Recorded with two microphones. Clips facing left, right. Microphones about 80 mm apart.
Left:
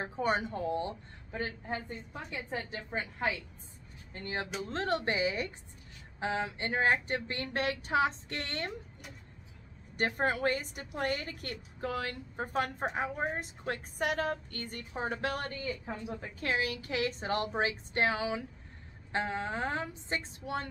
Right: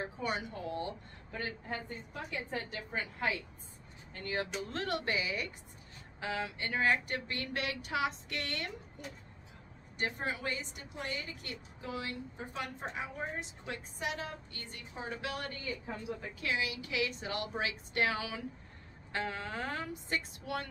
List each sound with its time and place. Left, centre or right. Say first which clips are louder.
0.0 s a woman's voice: left 5 dB; left
9.9 s a woman's voice: left 6 dB; left